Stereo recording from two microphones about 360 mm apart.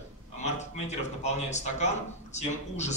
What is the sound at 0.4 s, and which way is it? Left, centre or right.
A man's voice, centre.